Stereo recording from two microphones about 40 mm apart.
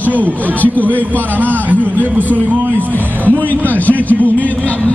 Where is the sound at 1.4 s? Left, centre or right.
Right.